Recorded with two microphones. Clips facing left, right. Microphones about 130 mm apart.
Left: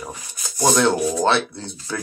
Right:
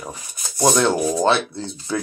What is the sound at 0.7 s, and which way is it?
Speech, 15° right (ahead or behind).